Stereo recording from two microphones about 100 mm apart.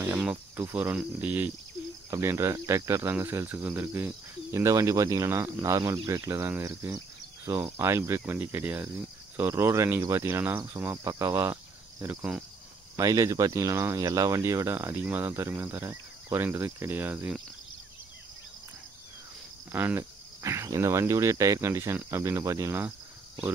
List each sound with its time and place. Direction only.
0.7 s speech: 15° right (ahead or behind)
2.0 s speech: 30° right (ahead or behind)
4.5 s speech: 30° right (ahead or behind)
12.1 s speech: 15° right (ahead or behind)
12.9 s speech: 30° right (ahead or behind)
19.7 s cricket: 20° right (ahead or behind)
20.0 s speech: 30° right (ahead or behind)